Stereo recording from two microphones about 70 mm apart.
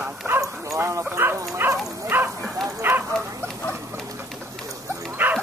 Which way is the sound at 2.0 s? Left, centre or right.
Right.